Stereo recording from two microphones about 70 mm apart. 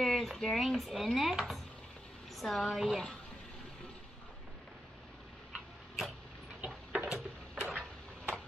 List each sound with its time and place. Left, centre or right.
0.0 s a woman's voice: centre
6.6 s tick-tock: centre
7.1 s a sound: centre